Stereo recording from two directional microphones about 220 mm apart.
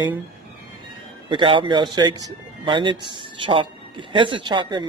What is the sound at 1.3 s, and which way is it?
Speech, 25° right (ahead or behind).